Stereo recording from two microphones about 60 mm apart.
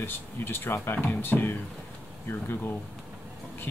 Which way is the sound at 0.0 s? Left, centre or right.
Left.